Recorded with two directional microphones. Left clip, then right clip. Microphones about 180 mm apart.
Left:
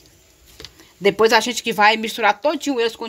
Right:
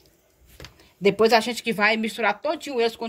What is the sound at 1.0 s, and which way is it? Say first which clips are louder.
Speech: left 3 dB; 40° left (ahead or behind).